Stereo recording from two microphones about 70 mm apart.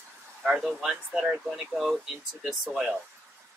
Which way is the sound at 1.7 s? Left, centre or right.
Centre.